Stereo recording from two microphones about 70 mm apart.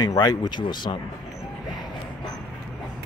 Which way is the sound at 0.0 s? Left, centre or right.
Left.